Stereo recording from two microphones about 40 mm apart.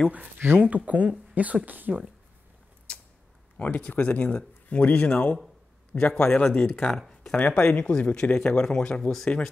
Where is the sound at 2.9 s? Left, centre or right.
Left.